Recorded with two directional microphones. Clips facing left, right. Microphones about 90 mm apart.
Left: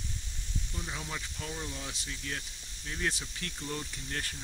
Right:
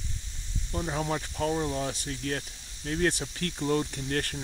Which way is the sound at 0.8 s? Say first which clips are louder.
Right 11 dB; 45° right (ahead or behind).